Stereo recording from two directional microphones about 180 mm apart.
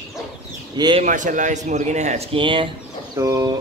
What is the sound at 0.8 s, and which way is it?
Speech, 25° right (ahead or behind).